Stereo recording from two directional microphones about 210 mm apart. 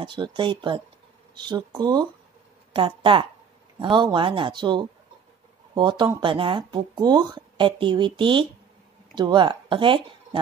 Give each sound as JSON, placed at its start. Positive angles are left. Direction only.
{"t": 0.0, "sound": "speech", "side_deg": -20}